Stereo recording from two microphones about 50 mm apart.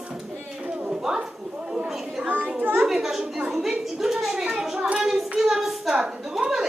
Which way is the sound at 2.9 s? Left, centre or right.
Centre.